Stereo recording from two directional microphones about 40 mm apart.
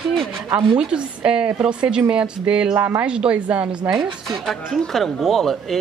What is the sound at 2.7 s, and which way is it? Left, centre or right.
Speech, right.